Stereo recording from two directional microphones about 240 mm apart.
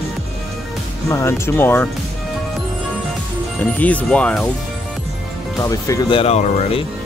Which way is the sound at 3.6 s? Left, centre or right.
Centre.